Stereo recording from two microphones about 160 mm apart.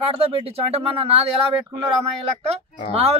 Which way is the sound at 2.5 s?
40° right (ahead or behind).